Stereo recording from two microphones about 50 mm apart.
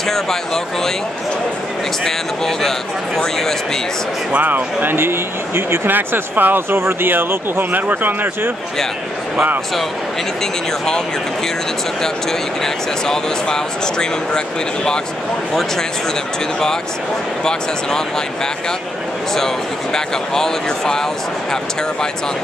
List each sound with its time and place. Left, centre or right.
2.0 s speech: centre
4.4 s speech: right
4.9 s speech: right
6.8 s speech: right
12.0 s speech: centre
19.3 s speech: centre